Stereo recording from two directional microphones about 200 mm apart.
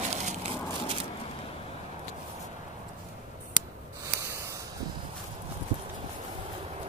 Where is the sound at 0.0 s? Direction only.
35° right (ahead or behind).